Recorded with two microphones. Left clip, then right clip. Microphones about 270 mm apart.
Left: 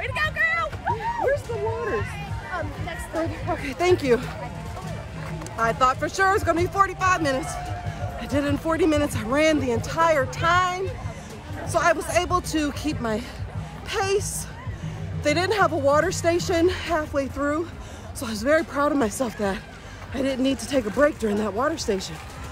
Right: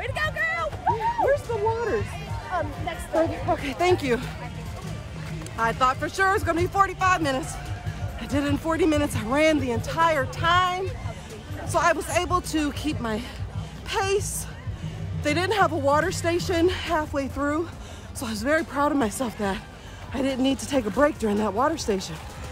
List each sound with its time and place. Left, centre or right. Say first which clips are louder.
0.0 s a sound: left 3 dB; right
2.5 s music: right 3 dB; right
3.2 s speech: right 4 dB; centre
5.6 s speech: left 2 dB; centre
15.2 s speech: left 1 dB; centre